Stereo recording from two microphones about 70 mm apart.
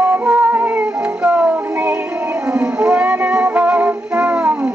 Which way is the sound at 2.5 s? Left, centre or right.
Centre.